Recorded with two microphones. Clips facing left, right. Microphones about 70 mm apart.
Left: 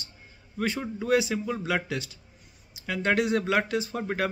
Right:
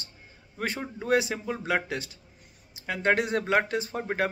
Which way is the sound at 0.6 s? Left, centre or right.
Right.